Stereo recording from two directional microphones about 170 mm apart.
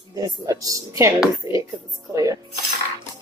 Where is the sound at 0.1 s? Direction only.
20° right (ahead or behind).